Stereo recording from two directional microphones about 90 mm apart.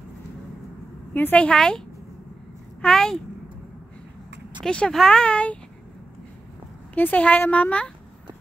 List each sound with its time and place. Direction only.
1.1 s speech: 15° left (ahead or behind)
4.6 s speech: 10° left (ahead or behind)
7.0 s speech: 20° left (ahead or behind)